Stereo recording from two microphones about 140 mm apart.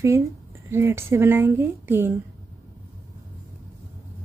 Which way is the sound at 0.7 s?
15° right (ahead or behind).